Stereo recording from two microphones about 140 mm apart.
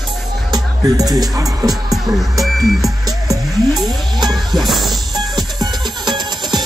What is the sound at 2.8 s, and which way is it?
Music, 25° right (ahead or behind).